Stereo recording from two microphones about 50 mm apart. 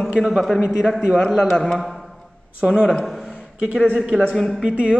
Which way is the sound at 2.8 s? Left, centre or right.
Centre.